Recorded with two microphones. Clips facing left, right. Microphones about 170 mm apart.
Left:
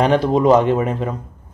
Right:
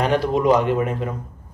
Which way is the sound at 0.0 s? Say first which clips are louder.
Left 4 dB; 25° left (ahead or behind).